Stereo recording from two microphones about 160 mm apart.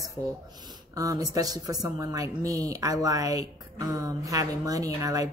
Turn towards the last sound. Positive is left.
turn(degrees=-20)  # may be behind; listen again after turning